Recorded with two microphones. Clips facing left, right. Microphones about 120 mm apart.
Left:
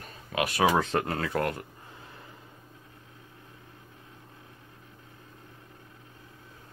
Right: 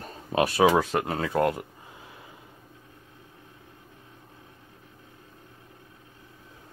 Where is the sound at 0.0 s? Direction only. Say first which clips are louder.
Right 5 dB; 30° right (ahead or behind).